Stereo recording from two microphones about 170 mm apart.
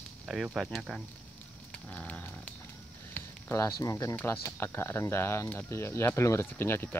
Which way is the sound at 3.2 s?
15° left (ahead or behind).